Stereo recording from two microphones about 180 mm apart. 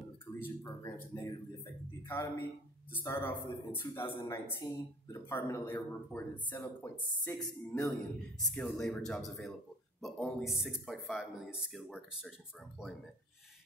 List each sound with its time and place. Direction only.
0.3 s a sound: 15° left (ahead or behind)
2.0 s a man's voice: 15° left (ahead or behind)
8.4 s speech: 5° left (ahead or behind)